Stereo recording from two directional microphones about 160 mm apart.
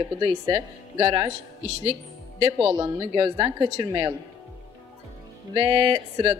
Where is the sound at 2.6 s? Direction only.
15° right (ahead or behind).